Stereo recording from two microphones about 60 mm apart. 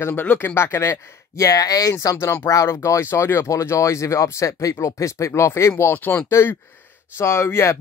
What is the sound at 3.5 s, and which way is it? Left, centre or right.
Speech, left.